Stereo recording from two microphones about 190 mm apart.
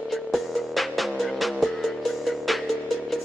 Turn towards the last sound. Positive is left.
turn(degrees=0)  # may be behind; listen again after turning